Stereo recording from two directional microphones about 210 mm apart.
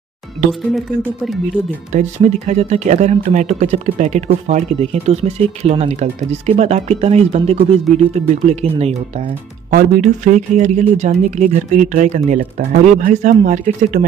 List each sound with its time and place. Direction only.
0.5 s speech: centre (ahead or behind)
2.0 s speech: 35° right (ahead or behind)